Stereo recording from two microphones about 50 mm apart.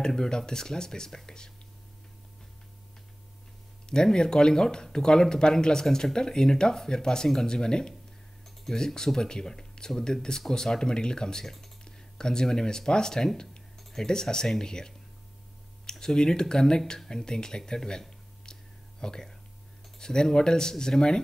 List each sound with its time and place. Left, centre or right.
0.0 s speech: centre
3.8 s speech: centre
17.1 s a sound: centre
20.0 s speech: centre